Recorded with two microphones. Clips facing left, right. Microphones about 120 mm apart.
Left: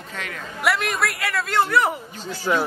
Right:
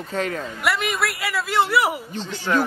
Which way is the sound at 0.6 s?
Centre (ahead or behind).